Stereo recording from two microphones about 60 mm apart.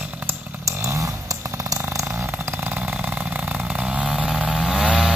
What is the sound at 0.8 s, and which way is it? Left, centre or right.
Chainsaw, right.